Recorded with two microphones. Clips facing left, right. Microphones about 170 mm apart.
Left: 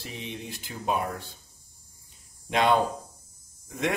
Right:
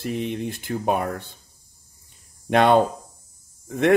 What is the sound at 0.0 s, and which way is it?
Speech, 55° right (ahead or behind).